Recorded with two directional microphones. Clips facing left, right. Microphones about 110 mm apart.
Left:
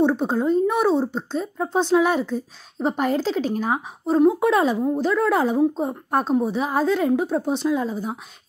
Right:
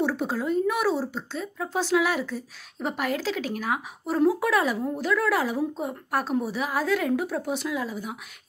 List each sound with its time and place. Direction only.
0.0 s speech: 25° left (ahead or behind)